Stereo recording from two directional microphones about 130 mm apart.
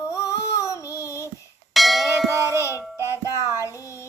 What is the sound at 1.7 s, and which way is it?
Church bell, centre (ahead or behind).